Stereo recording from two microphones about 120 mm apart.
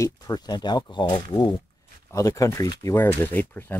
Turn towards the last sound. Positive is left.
turn(degrees=15)  # may be behind; listen again after turning